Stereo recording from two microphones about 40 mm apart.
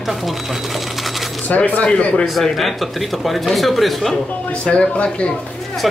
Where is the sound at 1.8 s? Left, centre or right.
Left.